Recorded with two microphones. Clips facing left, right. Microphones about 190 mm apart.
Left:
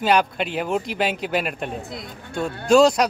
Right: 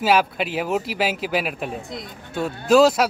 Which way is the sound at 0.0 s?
5° right (ahead or behind).